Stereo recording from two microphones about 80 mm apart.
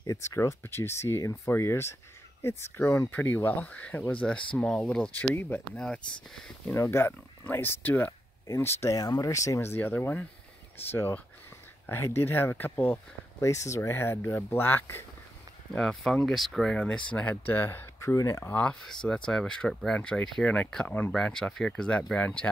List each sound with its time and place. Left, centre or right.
0.2 s speech: left
3.1 s speech: left
5.1 s speech: left
5.8 s speech: centre
6.7 s speech: left
8.9 s speech: left
9.7 s speech: left
13.4 s speech: left
15.8 s speech: centre; by 17.8 s left
18.0 s speech: left
18.4 s speech: centre